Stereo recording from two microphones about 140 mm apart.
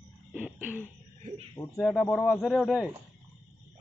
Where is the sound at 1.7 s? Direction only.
Centre (ahead or behind).